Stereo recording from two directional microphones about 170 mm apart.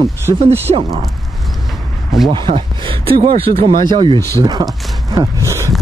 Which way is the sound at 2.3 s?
30° right (ahead or behind).